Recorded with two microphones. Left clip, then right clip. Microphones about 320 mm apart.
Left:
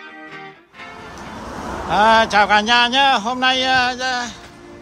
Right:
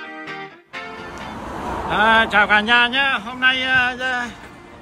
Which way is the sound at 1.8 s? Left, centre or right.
Centre.